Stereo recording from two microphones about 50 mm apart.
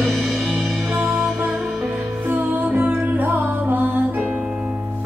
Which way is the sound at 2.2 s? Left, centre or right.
Right.